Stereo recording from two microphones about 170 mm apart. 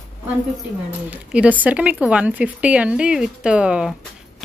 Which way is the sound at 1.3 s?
10° right (ahead or behind).